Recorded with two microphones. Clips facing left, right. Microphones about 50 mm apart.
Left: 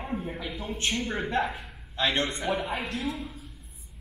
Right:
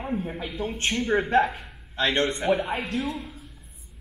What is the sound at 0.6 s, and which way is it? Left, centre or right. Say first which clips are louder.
Speech: right 4 dB; right.